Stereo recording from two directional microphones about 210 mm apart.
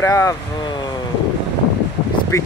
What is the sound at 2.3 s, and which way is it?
Speech, 15° left (ahead or behind).